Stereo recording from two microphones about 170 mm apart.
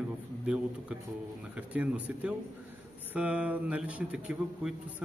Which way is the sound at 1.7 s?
10° right (ahead or behind).